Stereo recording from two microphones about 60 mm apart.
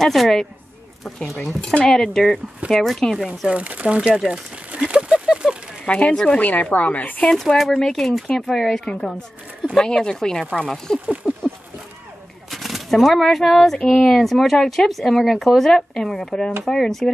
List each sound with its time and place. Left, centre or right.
0.0 s speech: centre
1.6 s speech: centre
3.5 s speech: right
4.1 s speech: centre
4.7 s a sound: centre
5.9 s speech: centre
6.1 s speech: centre
6.4 s speech: left
7.2 s speech: centre
11.1 s a sound: centre
12.4 s speech: centre